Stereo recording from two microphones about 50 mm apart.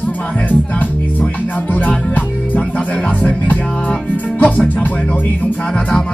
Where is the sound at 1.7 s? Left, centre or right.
Left.